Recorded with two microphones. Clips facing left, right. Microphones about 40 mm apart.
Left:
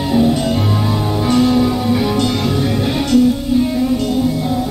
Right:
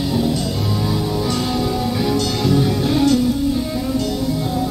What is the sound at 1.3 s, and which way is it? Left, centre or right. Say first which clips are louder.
Music: left 7 dB; centre.